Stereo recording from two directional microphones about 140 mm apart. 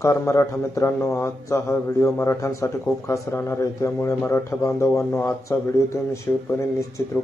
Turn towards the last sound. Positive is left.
turn(degrees=20)  # may be behind; listen again after turning